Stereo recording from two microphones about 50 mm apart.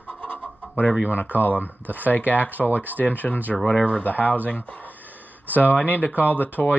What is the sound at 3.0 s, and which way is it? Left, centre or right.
Speech, left.